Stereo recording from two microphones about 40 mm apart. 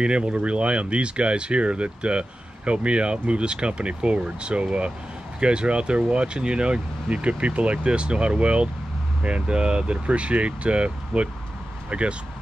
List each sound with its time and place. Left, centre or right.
0.0 s speech: right